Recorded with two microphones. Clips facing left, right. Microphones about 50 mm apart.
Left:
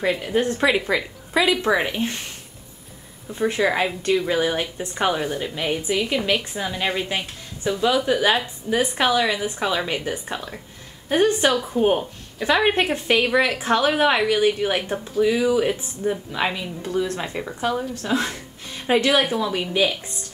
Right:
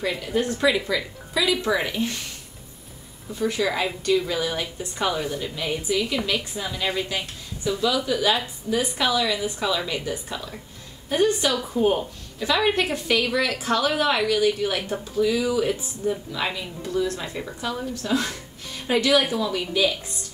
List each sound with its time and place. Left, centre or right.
0.2 s a woman's voice: left
3.3 s a woman's voice: left
11.5 s speech: centre
12.4 s a woman's voice: left